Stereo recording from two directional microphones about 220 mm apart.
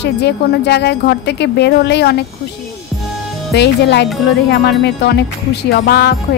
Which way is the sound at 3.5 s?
50° left (ahead or behind).